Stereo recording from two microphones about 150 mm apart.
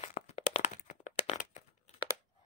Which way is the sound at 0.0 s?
55° left (ahead or behind).